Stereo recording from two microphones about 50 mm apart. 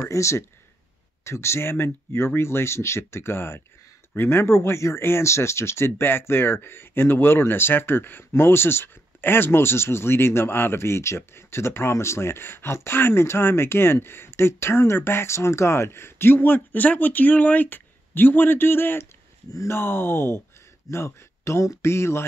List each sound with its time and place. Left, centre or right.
0.0 s speech: left
1.2 s speech: left
5.9 s speech: left
20.9 s speech: left